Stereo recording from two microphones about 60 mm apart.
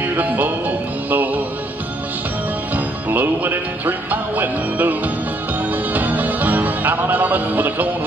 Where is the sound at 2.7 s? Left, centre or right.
Right.